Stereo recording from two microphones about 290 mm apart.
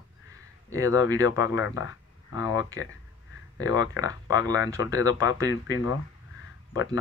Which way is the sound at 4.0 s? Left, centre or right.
Centre.